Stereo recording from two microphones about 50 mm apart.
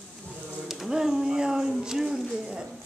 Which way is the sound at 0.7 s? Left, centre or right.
Centre.